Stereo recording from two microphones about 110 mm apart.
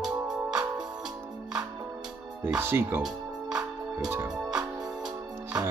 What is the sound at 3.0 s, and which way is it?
Music, 5° right (ahead or behind).